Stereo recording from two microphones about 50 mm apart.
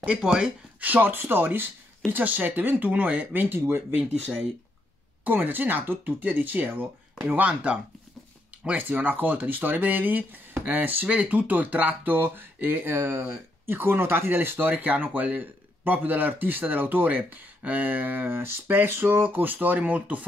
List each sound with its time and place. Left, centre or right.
0.0 s speech: centre
0.7 s speech: right
3.4 s speech: right
5.2 s speech: right
8.7 s speech: right
11.1 s speech: right
19.3 s speech: right